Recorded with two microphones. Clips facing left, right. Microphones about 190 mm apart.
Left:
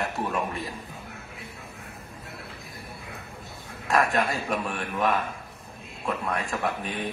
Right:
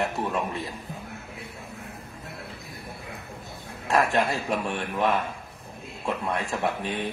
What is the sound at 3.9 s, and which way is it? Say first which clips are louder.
A man's voice: right 1 dB; 30° right (ahead or behind).